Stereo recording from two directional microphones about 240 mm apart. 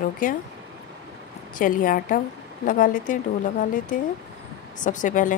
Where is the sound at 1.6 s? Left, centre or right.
Left.